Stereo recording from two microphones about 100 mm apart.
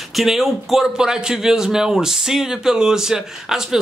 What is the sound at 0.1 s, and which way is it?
Speech, centre (ahead or behind).